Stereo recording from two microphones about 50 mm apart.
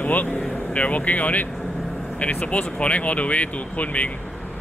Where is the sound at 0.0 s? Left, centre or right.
Left.